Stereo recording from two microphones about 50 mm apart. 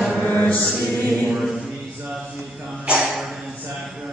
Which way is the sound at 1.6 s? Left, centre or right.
Centre.